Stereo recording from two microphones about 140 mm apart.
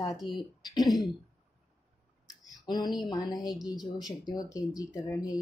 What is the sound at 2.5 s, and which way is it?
Speech, 30° left (ahead or behind).